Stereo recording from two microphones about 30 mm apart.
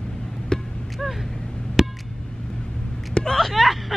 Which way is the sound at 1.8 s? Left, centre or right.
Centre.